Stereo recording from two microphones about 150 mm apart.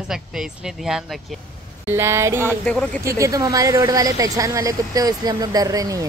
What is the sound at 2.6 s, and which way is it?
Speech, 10° left (ahead or behind).